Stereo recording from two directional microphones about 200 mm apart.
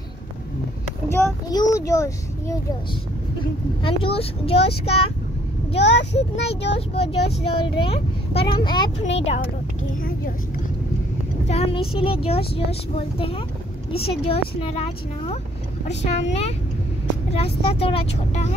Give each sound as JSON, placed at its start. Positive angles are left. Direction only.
{"t": 1.0, "sound": "a child's voice", "side_deg": 15}
{"t": 3.8, "sound": "speech", "side_deg": 30}
{"t": 5.8, "sound": "speech", "side_deg": 60}
{"t": 6.5, "sound": "speech", "side_deg": 30}
{"t": 11.4, "sound": "speech", "side_deg": 30}